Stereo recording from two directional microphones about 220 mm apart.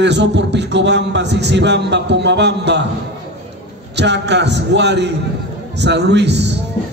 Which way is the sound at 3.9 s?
50° right (ahead or behind).